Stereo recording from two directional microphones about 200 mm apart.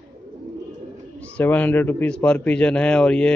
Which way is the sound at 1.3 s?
10° left (ahead or behind).